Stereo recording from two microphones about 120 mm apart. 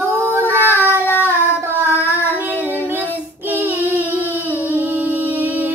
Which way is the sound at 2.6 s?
15° right (ahead or behind).